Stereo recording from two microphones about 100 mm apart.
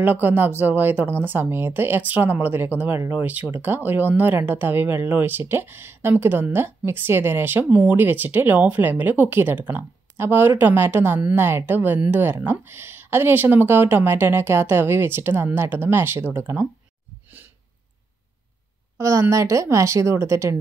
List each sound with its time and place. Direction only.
0.0 s speech: 20° right (ahead or behind)
18.9 s a woman's voice: 30° right (ahead or behind)